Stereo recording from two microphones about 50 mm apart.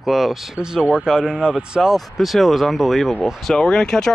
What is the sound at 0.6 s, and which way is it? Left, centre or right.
Speech, centre.